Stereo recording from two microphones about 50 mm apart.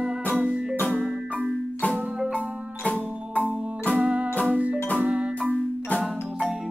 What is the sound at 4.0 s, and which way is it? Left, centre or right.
Music, right.